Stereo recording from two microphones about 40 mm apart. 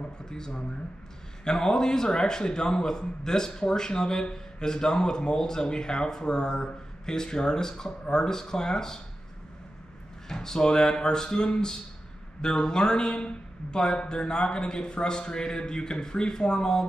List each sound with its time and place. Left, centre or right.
0.2 s speech: centre
10.2 s a man's voice: centre